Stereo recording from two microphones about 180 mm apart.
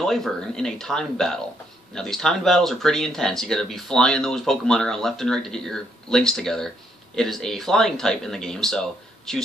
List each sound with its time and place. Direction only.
0.0 s speech: centre (ahead or behind)